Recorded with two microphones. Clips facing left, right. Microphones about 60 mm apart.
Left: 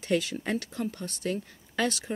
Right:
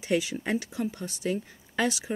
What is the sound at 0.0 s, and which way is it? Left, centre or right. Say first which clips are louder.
Speech: right 1 dB; centre.